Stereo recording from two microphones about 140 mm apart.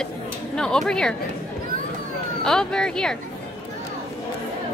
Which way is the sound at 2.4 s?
5° left (ahead or behind).